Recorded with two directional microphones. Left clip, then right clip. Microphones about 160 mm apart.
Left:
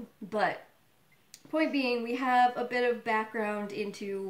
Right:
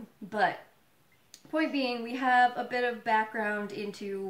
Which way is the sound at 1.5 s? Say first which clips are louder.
Left 1 dB; 10° left (ahead or behind).